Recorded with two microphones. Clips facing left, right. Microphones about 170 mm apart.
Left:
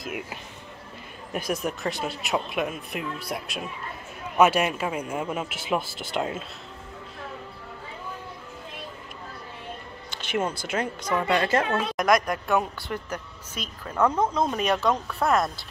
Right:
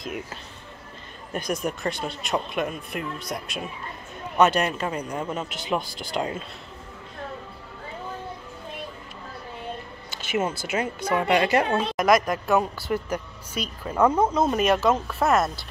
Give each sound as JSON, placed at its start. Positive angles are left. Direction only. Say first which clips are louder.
{"t": 0.0, "sound": "speech", "louder": "right 1 dB", "side_deg": 5}
{"t": 10.1, "sound": "a woman's voice", "louder": "right 1 dB", "side_deg": -5}
{"t": 12.0, "sound": "speech", "louder": "right 2 dB", "side_deg": 0}